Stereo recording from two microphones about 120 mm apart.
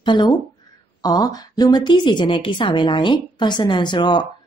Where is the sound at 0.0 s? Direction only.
40° left (ahead or behind).